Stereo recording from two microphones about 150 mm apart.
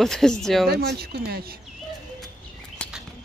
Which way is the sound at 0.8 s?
90° right.